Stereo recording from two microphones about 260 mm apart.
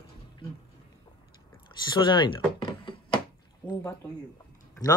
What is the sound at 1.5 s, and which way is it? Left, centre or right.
A woman's voice, centre.